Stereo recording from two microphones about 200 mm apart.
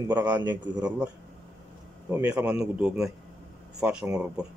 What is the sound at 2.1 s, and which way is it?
Speech, 10° right (ahead or behind).